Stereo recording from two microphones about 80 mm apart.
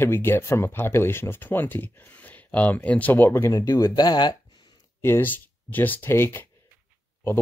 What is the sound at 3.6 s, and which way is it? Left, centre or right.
Speech, left.